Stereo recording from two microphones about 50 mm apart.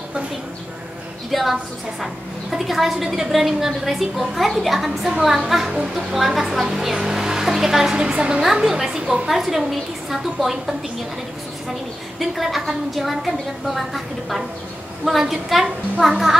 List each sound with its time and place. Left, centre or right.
1.3 s a woman's voice: centre
8.0 s a woman's voice: centre
8.4 s a woman's voice: centre
12.2 s a woman's voice: centre